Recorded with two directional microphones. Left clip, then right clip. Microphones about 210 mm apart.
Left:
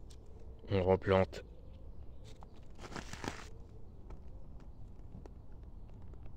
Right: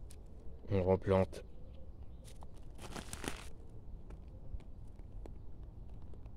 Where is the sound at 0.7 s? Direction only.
5° right (ahead or behind).